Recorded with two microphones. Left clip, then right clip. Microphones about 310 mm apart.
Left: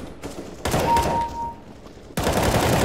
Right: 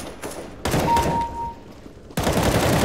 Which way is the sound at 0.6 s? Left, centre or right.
Centre.